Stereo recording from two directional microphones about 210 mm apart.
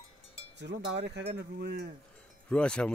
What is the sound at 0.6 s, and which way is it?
Cowbell, 55° right (ahead or behind).